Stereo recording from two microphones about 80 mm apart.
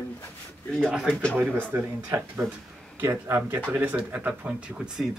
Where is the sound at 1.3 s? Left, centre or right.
Right.